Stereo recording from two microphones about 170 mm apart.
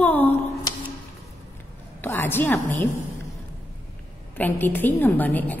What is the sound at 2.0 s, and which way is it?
Speech, 10° left (ahead or behind).